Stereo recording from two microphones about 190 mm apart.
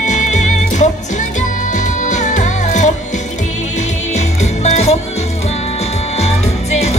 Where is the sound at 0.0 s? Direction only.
40° left (ahead or behind).